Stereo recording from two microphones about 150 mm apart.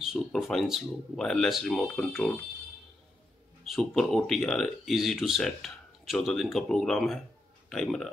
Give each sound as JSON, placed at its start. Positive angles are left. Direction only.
{"t": 0.0, "sound": "speech", "side_deg": 0}
{"t": 3.6, "sound": "speech", "side_deg": 0}